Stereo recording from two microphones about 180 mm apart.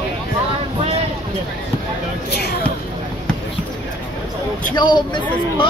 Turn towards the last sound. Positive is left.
turn(degrees=25)  # may be behind; listen again after turning